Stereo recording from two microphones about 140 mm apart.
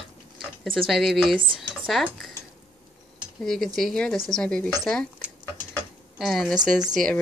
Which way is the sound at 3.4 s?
5° left (ahead or behind).